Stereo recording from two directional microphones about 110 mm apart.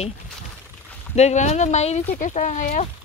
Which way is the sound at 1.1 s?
90° left.